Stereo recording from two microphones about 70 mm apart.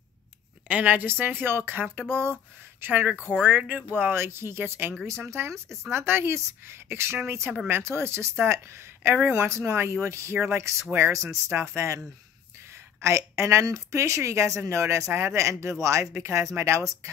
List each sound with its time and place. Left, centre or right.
0.7 s a woman's voice: right
13.0 s speech: right